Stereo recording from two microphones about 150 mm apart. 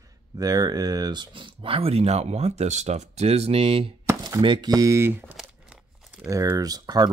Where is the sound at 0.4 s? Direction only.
25° right (ahead or behind).